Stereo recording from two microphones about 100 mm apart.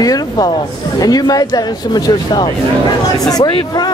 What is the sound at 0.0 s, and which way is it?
Speech, 40° left (ahead or behind).